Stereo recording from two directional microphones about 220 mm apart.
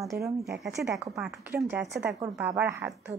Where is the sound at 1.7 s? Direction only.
5° right (ahead or behind).